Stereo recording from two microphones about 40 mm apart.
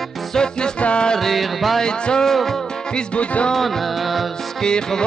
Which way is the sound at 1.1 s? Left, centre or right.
Centre.